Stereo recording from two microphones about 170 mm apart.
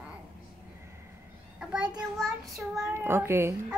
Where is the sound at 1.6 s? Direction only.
5° right (ahead or behind).